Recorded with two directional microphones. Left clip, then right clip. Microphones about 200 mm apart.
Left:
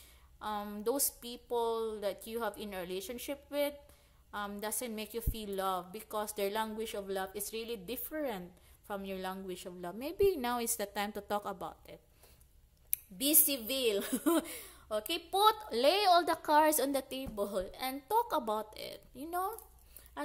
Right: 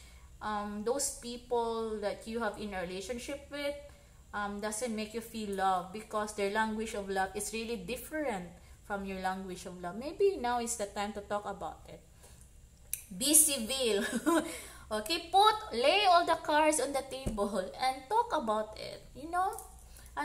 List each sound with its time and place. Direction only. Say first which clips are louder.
0.4 s a woman's voice: right 2 dB; 40° left (ahead or behind)